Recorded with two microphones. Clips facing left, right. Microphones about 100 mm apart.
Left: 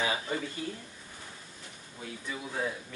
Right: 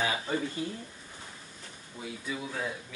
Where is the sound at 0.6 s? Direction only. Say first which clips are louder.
Right 2 dB; 25° right (ahead or behind).